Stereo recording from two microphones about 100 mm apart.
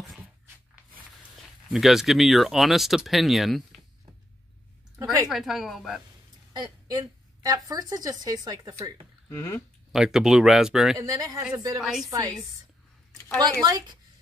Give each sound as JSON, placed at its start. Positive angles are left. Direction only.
{"t": 1.7, "sound": "speech", "side_deg": -5}
{"t": 5.3, "sound": "speech", "side_deg": 0}
{"t": 6.5, "sound": "a woman's voice", "side_deg": -45}
{"t": 9.9, "sound": "speech", "side_deg": -5}
{"t": 11.0, "sound": "speech", "side_deg": -40}
{"t": 11.8, "sound": "speech", "side_deg": 0}
{"t": 12.1, "sound": "speech", "side_deg": -40}
{"t": 13.4, "sound": "speech", "side_deg": -40}